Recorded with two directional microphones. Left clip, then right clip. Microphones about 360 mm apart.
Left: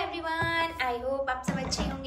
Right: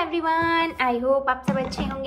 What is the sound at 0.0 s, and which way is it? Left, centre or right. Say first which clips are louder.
A woman's voice: right 8 dB; centre.